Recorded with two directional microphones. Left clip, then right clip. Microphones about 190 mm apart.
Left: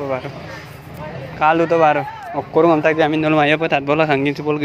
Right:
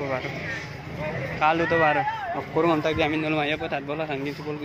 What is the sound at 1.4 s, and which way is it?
A man's voice, 55° left (ahead or behind).